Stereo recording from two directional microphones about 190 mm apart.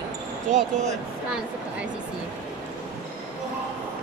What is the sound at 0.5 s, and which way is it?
Speech, 35° right (ahead or behind).